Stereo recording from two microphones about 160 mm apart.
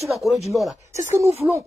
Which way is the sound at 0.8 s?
15° right (ahead or behind).